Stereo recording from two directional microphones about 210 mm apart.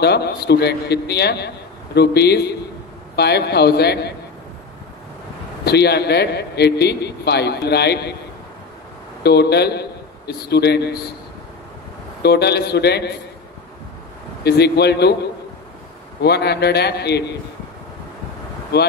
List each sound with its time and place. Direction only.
0.0 s a man's voice: 50° left (ahead or behind)
5.7 s a man's voice: 50° left (ahead or behind)
9.2 s a man's voice: 50° left (ahead or behind)
12.2 s a man's voice: 50° left (ahead or behind)
14.4 s a man's voice: 50° left (ahead or behind)
16.2 s a man's voice: 50° left (ahead or behind)